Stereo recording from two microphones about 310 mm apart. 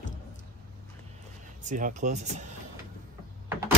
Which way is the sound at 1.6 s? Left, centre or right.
Right.